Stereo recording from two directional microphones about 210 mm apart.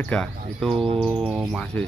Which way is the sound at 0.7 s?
25° right (ahead or behind).